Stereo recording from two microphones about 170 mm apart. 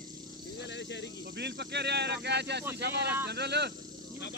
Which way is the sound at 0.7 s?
90° left.